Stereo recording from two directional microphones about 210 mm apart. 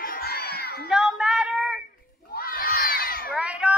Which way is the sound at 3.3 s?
5° right (ahead or behind).